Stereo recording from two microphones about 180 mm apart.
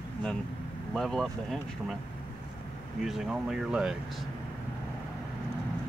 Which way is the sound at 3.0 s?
Centre (ahead or behind).